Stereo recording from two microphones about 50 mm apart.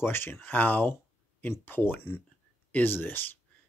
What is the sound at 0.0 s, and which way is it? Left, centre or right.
Speech, left.